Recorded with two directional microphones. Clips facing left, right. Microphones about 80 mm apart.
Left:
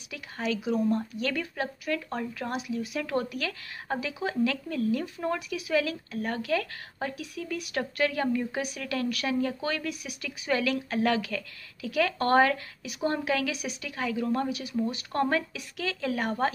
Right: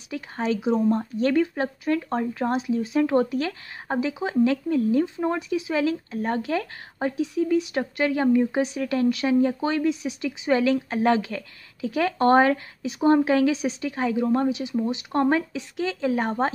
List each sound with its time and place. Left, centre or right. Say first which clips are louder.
0.1 s speech: right 6 dB; right